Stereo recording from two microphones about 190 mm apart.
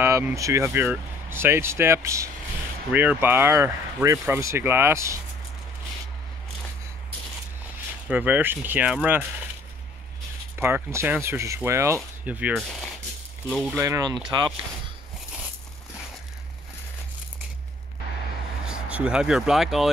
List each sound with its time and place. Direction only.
0.0 s speech: 15° right (ahead or behind)
8.1 s speech: 10° right (ahead or behind)
10.6 s speech: 15° right (ahead or behind)
13.7 s speech: 15° right (ahead or behind)
18.7 s speech: 5° right (ahead or behind)